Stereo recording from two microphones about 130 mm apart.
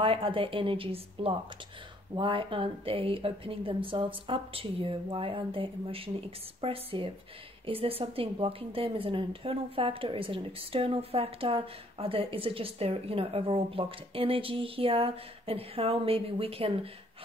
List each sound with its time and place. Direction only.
0.0 s a woman's voice: 45° right (ahead or behind)